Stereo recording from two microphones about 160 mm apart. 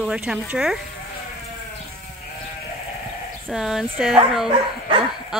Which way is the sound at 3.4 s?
Centre (ahead or behind).